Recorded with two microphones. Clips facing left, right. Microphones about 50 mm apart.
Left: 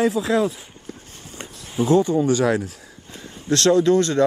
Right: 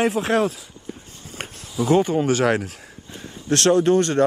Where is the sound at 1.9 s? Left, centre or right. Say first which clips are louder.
Even; right.